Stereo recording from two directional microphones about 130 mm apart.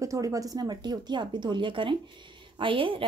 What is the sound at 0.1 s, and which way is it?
Speech, 25° right (ahead or behind).